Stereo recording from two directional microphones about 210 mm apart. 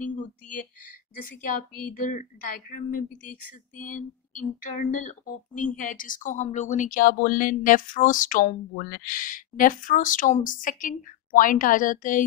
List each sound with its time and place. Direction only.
1.1 s a woman's voice: 40° left (ahead or behind)